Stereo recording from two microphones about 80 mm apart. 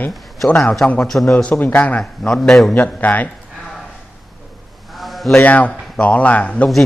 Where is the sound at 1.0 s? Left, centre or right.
Centre.